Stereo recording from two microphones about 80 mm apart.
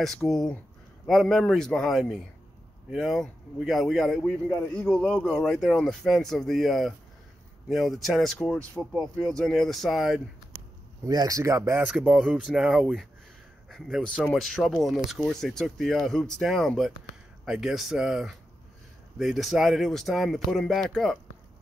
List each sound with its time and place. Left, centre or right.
0.0 s a man's voice: centre
4.7 s a man's voice: centre
11.1 s speech: right
11.9 s speech: centre
13.7 s a sound: centre
14.0 s a man's voice: centre
14.3 s speech: centre